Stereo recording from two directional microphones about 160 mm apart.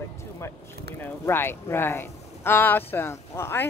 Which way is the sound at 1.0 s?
15° left (ahead or behind).